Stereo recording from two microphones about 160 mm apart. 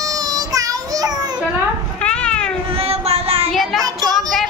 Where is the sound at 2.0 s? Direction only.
5° left (ahead or behind).